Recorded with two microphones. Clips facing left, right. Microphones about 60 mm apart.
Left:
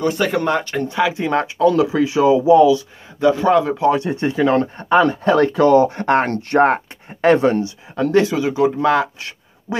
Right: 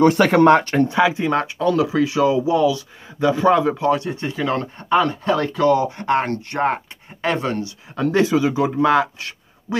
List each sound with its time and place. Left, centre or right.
0.0 s speech: right
1.0 s speech: centre
3.2 s speech: centre
4.0 s speech: left
7.3 s speech: left
7.9 s speech: centre